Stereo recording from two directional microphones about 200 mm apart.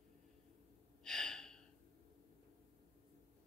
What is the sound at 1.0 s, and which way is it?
Gasp, centre (ahead or behind).